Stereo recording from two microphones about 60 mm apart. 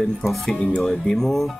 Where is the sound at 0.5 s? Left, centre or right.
Centre.